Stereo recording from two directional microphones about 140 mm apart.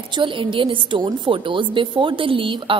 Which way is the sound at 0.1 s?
35° right (ahead or behind).